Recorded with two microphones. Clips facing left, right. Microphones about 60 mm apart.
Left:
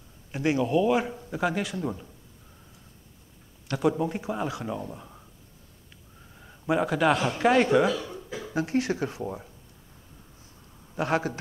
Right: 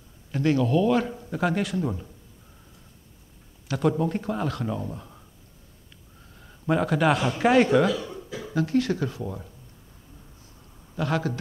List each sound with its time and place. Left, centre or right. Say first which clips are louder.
0.3 s speech: right 2 dB; centre
1.1 s a man's voice: right 2 dB; centre
3.6 s speech: right 1 dB; centre
6.3 s a man's voice: right 1 dB; centre
8.5 s speech: right 3 dB; left
11.0 s speech: even; left